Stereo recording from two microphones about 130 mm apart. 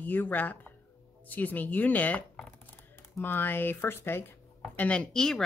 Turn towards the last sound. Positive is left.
turn(degrees=5)  # may be behind; listen again after turning